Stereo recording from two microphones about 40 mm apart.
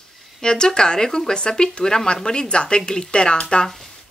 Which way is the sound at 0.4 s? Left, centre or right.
Centre.